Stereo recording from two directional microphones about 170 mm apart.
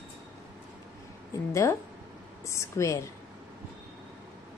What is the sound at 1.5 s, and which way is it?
Speech, 15° left (ahead or behind).